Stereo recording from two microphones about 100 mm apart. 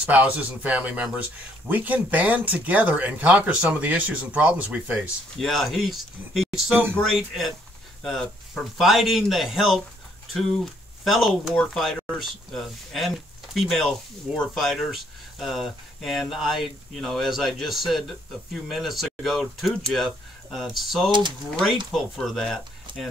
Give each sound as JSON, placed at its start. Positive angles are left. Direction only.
{"t": 0.0, "sound": "speech", "side_deg": -15}
{"t": 5.4, "sound": "speech", "side_deg": 0}
{"t": 6.7, "sound": "speech", "side_deg": -20}
{"t": 7.1, "sound": "speech", "side_deg": 0}